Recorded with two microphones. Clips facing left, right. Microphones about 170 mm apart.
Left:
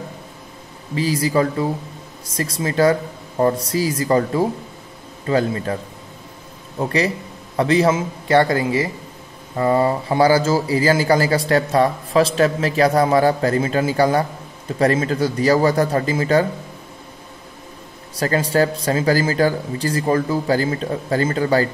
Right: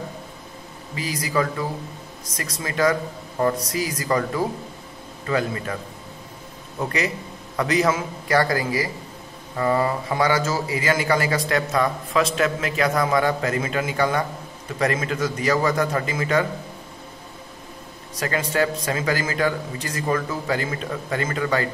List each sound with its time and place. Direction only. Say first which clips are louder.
0.9 s a man's voice: left 6 dB; 30° left (ahead or behind)
6.8 s a man's voice: left 5 dB; 30° left (ahead or behind)
18.1 s a man's voice: left 6 dB; 35° left (ahead or behind)